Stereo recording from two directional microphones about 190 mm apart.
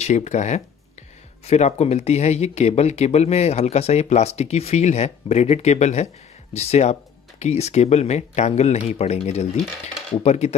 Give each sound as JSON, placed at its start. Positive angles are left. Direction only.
{"t": 0.0, "sound": "speech", "side_deg": 40}